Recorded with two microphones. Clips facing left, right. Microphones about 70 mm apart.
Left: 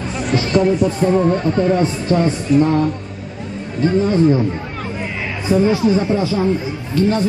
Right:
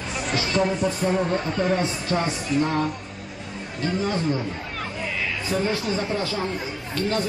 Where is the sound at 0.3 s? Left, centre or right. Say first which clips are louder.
Left 8 dB; left.